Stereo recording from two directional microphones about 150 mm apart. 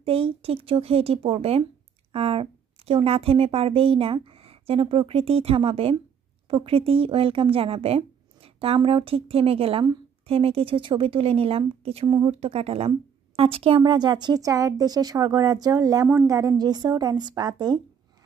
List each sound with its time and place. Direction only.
0.0 s a woman's voice: 40° right (ahead or behind)